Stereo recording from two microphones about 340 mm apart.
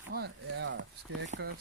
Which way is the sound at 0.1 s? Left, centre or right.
Right.